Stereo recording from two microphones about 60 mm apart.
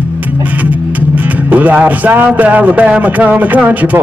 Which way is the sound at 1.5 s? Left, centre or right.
Right.